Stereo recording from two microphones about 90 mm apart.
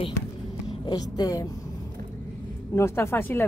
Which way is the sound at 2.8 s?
30° left (ahead or behind).